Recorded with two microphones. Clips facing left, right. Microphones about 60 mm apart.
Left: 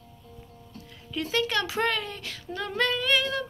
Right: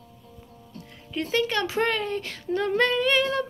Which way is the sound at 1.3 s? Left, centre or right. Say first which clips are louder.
Right 2 dB; right.